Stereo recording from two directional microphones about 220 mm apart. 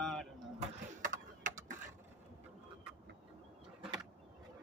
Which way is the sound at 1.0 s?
35° right (ahead or behind).